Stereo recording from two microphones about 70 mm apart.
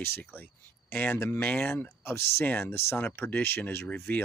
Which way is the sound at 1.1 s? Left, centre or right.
Left.